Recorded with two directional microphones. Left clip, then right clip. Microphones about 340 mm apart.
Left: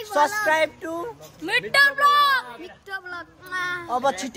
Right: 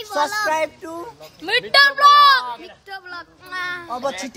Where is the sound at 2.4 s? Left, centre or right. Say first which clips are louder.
Right 5 dB; centre.